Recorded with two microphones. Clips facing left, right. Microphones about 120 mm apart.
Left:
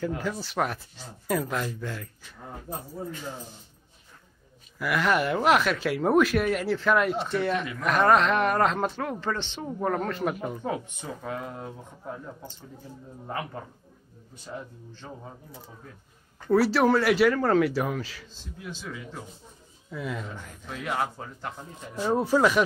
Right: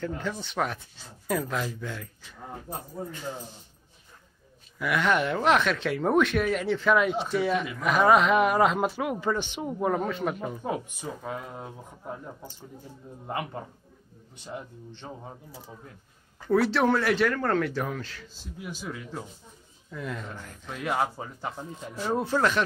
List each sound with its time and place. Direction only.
0.2 s speech: 5° left (ahead or behind)
4.7 s speech: centre (ahead or behind)
10.6 s speech: 10° right (ahead or behind)
14.4 s speech: 20° right (ahead or behind)
16.3 s speech: 5° left (ahead or behind)
18.6 s speech: 10° right (ahead or behind)
19.9 s speech: 5° left (ahead or behind)
21.9 s speech: 10° left (ahead or behind)